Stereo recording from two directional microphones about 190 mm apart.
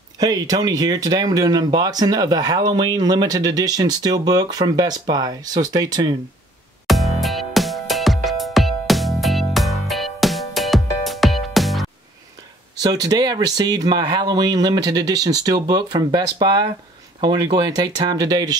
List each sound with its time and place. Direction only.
0.2 s speech: 20° right (ahead or behind)
6.9 s music: centre (ahead or behind)
12.8 s speech: 20° right (ahead or behind)